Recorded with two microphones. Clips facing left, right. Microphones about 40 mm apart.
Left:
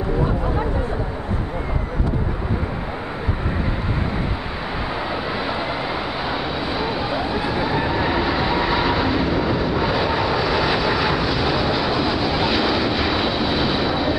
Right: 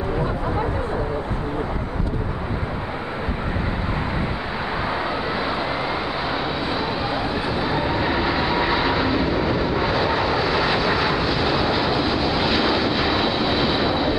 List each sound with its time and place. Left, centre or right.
6.3 s vehicle: centre
9.2 s vehicle: right
10.0 s vehicle: centre